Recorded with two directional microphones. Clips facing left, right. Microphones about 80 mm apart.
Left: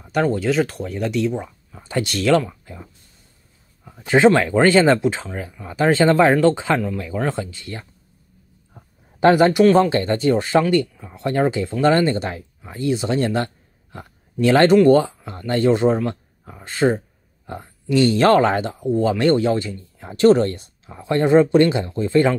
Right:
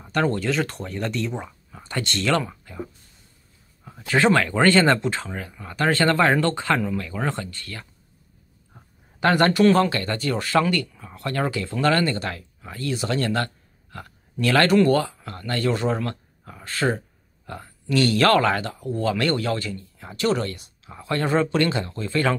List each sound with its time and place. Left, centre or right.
0.0 s speech: centre
4.2 s speech: centre
6.7 s speech: centre
7.2 s speech: centre
9.8 s speech: left
20.9 s speech: left